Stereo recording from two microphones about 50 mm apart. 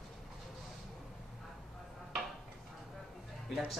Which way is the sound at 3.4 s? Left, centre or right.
Centre.